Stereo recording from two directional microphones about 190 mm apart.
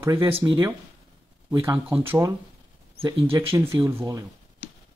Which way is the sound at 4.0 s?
15° right (ahead or behind).